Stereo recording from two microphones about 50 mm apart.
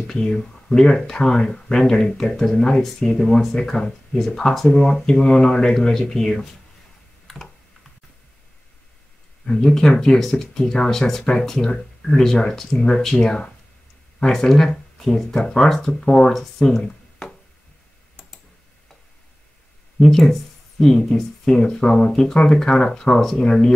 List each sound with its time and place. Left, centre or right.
0.0 s speech: centre
9.5 s speech: centre
15.3 s speech: centre
20.0 s speech: centre